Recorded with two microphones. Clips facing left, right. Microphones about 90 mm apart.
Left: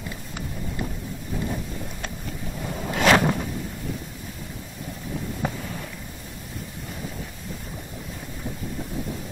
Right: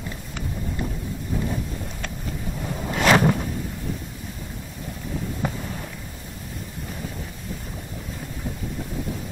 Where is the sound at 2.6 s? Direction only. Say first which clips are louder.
Left 1 dB; centre (ahead or behind).